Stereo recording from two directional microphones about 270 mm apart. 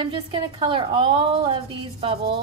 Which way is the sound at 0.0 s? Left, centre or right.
Centre.